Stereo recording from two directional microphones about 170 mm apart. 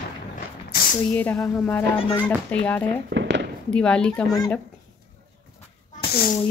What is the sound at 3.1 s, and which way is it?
Firecracker, 90° right.